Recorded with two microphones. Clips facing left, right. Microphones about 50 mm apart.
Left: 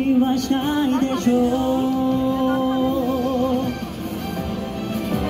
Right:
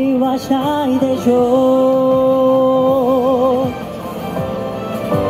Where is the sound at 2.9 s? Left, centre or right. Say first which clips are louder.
Right 8 dB; right.